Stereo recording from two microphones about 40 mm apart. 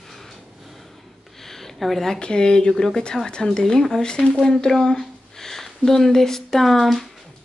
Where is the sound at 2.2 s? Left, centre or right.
Left.